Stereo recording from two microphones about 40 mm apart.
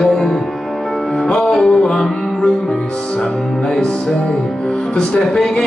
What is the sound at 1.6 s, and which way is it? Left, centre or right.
Music, centre.